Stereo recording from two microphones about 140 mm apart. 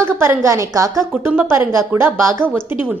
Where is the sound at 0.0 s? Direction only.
20° right (ahead or behind).